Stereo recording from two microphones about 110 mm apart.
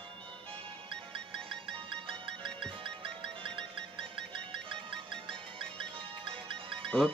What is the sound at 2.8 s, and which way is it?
Music, 50° right (ahead or behind).